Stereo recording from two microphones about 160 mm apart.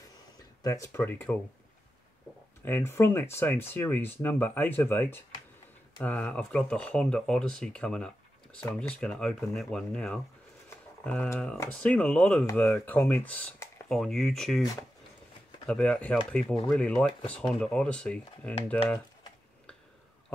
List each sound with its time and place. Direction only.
0.6 s speech: 20° left (ahead or behind)
2.6 s speech: 15° left (ahead or behind)
11.5 s speech: 20° left (ahead or behind)
11.9 s speech: 10° left (ahead or behind)
15.6 s speech: 5° left (ahead or behind)